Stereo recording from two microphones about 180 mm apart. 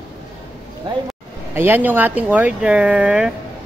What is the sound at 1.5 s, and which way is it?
Speech, 10° right (ahead or behind).